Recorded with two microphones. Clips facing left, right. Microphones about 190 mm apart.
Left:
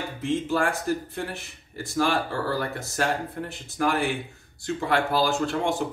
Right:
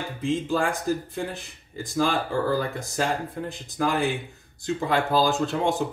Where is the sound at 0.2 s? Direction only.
15° right (ahead or behind).